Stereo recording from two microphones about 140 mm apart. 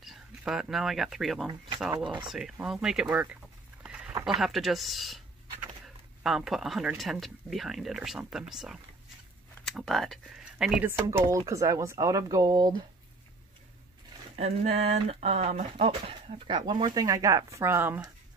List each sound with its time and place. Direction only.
0.0 s speech: centre (ahead or behind)
2.0 s speech: 35° right (ahead or behind)
2.5 s speech: 5° right (ahead or behind)
3.8 s a sound: 10° right (ahead or behind)
4.1 s a sound: 25° right (ahead or behind)
4.4 s speech: centre (ahead or behind)
6.2 s speech: centre (ahead or behind)
10.9 s speech: 15° right (ahead or behind)
14.3 s speech: 50° right (ahead or behind); by 18.0 s 15° right (ahead or behind)